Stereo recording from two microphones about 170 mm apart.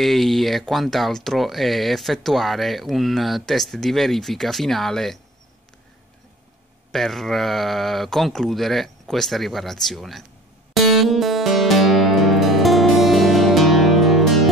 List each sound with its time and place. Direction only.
0.0 s speech: centre (ahead or behind)
6.9 s speech: centre (ahead or behind)
10.7 s music: centre (ahead or behind)